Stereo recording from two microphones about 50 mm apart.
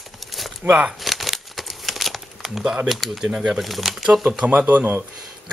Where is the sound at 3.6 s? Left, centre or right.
Centre.